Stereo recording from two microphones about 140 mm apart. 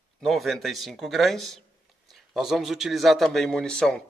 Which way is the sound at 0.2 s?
Centre (ahead or behind).